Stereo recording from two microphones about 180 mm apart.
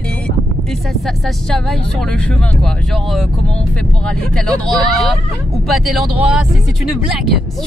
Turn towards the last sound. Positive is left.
turn(degrees=0)  # may be behind; listen again after turning